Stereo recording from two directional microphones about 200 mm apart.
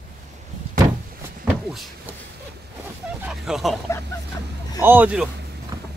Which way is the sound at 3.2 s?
Centre (ahead or behind).